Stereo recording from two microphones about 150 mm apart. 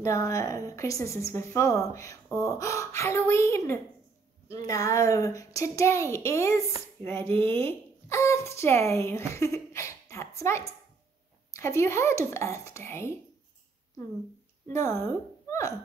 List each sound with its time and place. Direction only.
0.0 s a woman's voice: 20° left (ahead or behind)
14.7 s speech: 15° left (ahead or behind)